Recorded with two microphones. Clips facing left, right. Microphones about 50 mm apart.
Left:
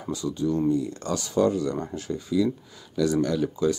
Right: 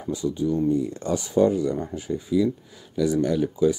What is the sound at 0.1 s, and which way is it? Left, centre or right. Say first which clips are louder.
Speech: right 2 dB; centre.